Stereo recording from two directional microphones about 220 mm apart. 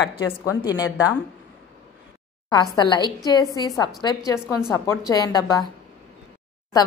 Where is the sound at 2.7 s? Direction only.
15° left (ahead or behind).